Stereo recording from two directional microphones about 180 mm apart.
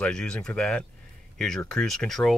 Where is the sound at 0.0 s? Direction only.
5° left (ahead or behind).